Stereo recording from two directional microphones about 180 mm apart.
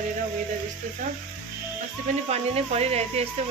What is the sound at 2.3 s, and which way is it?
Speech, 35° right (ahead or behind).